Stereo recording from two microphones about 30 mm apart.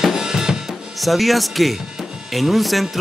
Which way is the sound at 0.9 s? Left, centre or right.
Centre.